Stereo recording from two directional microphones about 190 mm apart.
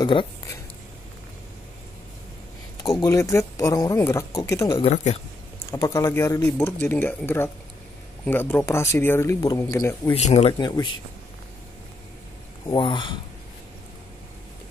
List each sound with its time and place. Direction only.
0.0 s speech: 25° left (ahead or behind)
3.0 s speech: 15° left (ahead or behind)
4.8 s speech: 35° left (ahead or behind)
5.7 s speech: 15° left (ahead or behind)
10.1 s speech: 35° left (ahead or behind)
10.6 s speech: 25° left (ahead or behind)
12.6 s speech: 25° left (ahead or behind)